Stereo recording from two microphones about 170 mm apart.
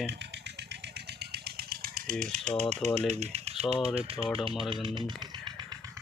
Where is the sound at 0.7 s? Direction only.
75° right (ahead or behind); by 2.7 s 50° right (ahead or behind).